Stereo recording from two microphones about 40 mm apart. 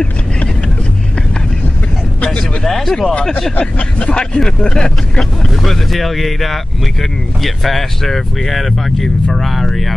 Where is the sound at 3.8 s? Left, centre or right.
Left.